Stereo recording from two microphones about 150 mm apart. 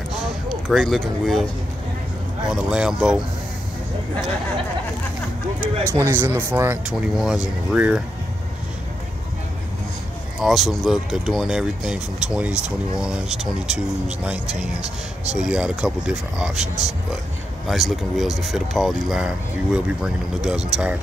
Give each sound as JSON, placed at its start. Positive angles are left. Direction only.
{"t": 0.7, "sound": "speech", "side_deg": 0}
{"t": 2.5, "sound": "speech", "side_deg": -5}
{"t": 5.9, "sound": "speech", "side_deg": -15}
{"t": 6.9, "sound": "speech", "side_deg": -5}
{"t": 10.4, "sound": "speech", "side_deg": 0}
{"t": 17.6, "sound": "speech", "side_deg": 0}